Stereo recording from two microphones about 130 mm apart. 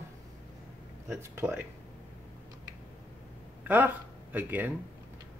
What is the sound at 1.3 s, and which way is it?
Speech, 15° right (ahead or behind).